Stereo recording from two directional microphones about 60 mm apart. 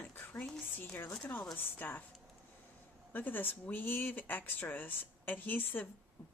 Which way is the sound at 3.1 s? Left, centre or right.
Left.